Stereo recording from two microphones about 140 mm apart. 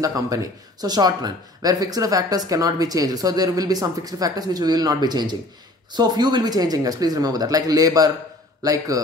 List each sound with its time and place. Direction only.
0.0 s speech: 25° right (ahead or behind)